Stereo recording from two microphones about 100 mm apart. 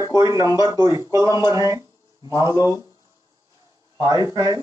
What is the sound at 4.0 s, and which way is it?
Speech, 40° right (ahead or behind).